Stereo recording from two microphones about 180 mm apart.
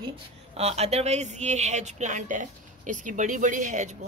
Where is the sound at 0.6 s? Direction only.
35° right (ahead or behind).